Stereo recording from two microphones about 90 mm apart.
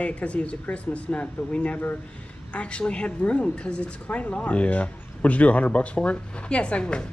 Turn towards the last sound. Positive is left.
turn(degrees=10)  # may be behind; listen again after turning